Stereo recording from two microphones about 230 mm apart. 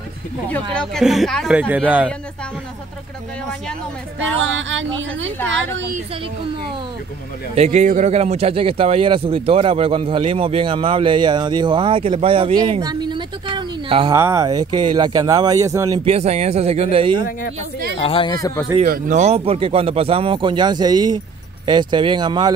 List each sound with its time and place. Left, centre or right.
0.7 s speech: centre
4.4 s speech: right
7.5 s speech: right
16.0 s speech: right
17.9 s speech: left
18.9 s speech: right